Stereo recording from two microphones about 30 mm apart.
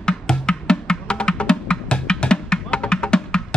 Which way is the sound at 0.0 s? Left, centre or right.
Left.